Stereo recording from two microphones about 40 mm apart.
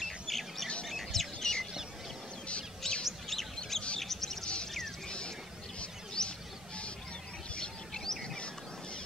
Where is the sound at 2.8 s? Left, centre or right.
Centre.